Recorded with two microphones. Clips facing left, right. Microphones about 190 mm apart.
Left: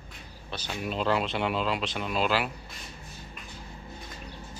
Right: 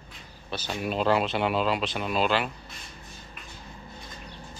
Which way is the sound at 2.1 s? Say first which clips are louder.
Right 1 dB; 5° left (ahead or behind).